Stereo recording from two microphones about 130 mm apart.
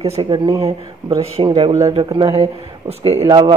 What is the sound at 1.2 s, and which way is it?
Speech, 45° right (ahead or behind).